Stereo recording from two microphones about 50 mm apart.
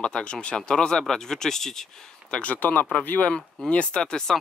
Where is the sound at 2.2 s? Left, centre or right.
Left.